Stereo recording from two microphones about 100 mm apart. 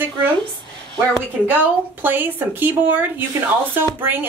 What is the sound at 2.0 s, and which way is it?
A woman's voice, 20° right (ahead or behind).